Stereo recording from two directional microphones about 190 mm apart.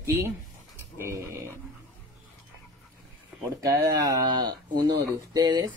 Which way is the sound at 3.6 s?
15° right (ahead or behind).